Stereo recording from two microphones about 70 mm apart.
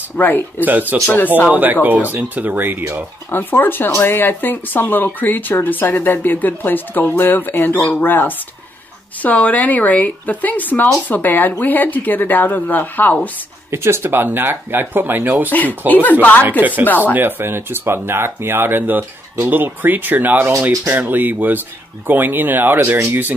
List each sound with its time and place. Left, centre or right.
0.6 s speech: right
1.1 s speech: left
1.5 s speech: right
3.3 s speech: left
13.7 s speech: right
15.9 s speech: left
16.4 s speech: right
16.8 s speech: left
17.1 s speech: right